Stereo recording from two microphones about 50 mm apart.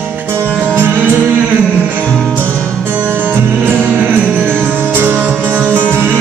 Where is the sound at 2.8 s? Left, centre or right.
Right.